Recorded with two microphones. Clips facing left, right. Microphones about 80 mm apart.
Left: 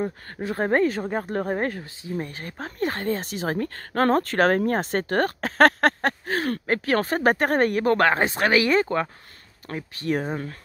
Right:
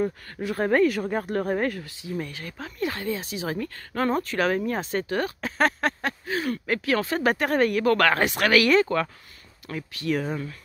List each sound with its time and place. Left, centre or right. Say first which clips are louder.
0.0 s speech: right 1 dB; left
5.9 s speech: left 3 dB; left
9.7 s speech: left 1 dB; left